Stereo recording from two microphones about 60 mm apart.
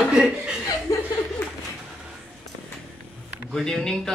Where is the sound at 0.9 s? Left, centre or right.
Left.